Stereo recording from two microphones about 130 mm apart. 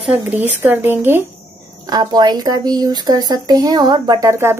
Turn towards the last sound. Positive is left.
turn(degrees=-20)  # may be behind; listen again after turning